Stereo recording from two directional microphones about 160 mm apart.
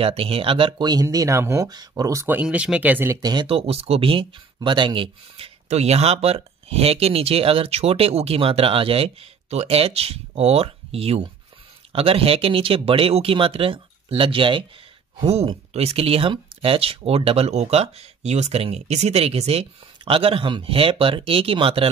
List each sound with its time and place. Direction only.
0.0 s speech: 35° right (ahead or behind); by 3.2 s 10° right (ahead or behind)
3.2 s speech: 25° right (ahead or behind)